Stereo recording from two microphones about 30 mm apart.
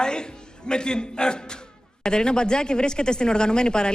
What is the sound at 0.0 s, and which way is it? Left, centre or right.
A man's voice, left.